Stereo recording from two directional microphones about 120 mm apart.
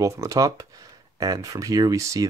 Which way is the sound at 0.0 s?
25° right (ahead or behind).